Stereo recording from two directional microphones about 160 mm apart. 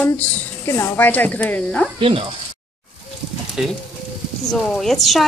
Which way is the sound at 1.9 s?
35° right (ahead or behind).